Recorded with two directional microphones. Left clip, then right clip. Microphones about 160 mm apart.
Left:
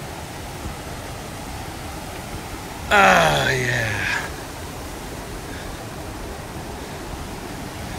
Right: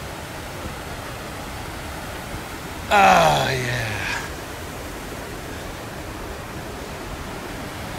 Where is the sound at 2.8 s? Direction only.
30° right (ahead or behind).